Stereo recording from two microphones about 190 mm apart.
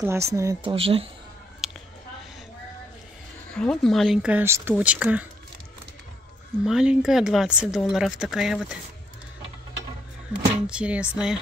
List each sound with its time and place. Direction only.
0.0 s speech: 15° right (ahead or behind)
0.7 s speech: 30° right (ahead or behind)
1.6 s a sound: centre (ahead or behind)
3.4 s speech: 5° left (ahead or behind)
6.6 s speech: 5° right (ahead or behind)
10.3 s speech: 5° right (ahead or behind)